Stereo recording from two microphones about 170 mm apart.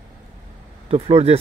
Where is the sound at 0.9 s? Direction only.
35° right (ahead or behind).